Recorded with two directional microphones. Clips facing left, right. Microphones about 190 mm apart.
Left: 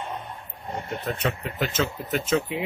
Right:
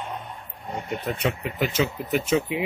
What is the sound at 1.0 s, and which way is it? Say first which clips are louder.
A man's voice: right 1 dB; 10° right (ahead or behind).